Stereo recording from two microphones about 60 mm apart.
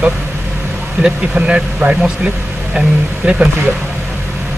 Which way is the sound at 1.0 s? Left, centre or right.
Centre.